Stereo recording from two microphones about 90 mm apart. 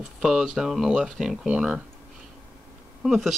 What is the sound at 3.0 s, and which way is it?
Speech, centre (ahead or behind).